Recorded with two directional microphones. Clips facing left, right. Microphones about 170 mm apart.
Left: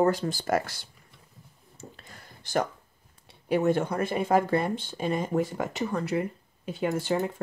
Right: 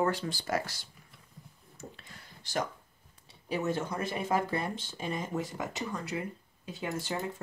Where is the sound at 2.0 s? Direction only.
50° left (ahead or behind).